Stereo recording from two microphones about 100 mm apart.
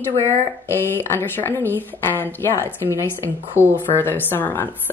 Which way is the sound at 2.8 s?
25° right (ahead or behind).